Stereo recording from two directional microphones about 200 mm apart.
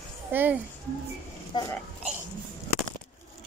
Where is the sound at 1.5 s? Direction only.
25° left (ahead or behind).